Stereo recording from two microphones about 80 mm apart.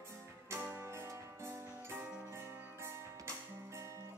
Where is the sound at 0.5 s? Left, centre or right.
Right.